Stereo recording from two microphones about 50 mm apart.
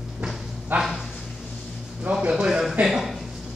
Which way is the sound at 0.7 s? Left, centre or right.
Right.